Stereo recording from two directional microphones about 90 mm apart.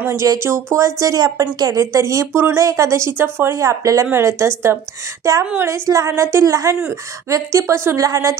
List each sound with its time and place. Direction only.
0.0 s speech: 30° right (ahead or behind)
5.4 s a woman's voice: 20° right (ahead or behind)
5.7 s speech: 35° right (ahead or behind)